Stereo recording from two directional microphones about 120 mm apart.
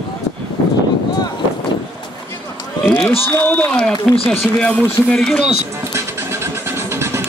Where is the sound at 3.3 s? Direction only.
15° left (ahead or behind).